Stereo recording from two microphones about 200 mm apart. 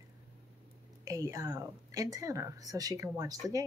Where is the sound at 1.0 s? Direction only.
15° right (ahead or behind).